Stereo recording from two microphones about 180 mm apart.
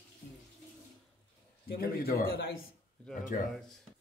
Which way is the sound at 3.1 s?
45° left (ahead or behind).